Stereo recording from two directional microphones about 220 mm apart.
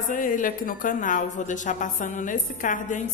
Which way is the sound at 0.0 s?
35° left (ahead or behind).